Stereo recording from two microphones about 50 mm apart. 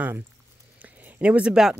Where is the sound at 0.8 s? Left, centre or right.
Right; by 1.8 s centre.